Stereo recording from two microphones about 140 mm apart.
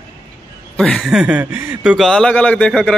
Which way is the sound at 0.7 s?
5° left (ahead or behind).